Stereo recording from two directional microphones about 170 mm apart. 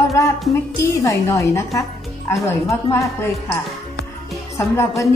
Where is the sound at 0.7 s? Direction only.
20° left (ahead or behind).